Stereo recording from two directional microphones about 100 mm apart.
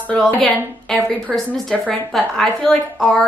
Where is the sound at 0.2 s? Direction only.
10° left (ahead or behind).